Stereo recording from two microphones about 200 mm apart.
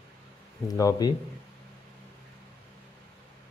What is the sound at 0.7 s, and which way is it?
Speech, 15° left (ahead or behind).